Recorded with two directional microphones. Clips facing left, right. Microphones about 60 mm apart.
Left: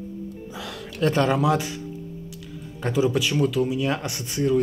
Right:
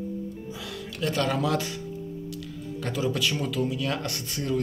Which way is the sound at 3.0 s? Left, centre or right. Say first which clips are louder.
Left 6 dB; centre.